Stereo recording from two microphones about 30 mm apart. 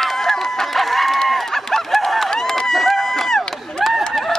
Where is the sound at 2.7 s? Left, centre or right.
Centre.